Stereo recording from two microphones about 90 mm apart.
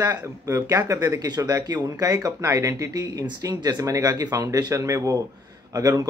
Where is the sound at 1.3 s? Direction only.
45° right (ahead or behind).